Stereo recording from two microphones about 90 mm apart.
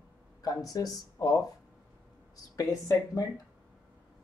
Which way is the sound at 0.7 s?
45° left (ahead or behind).